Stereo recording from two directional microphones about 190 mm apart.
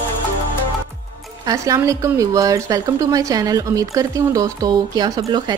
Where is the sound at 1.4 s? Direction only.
15° right (ahead or behind).